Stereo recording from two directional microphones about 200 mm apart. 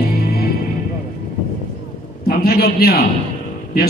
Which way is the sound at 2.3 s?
50° left (ahead or behind).